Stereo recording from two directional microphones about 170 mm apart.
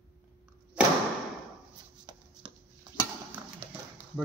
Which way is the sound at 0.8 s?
5° right (ahead or behind).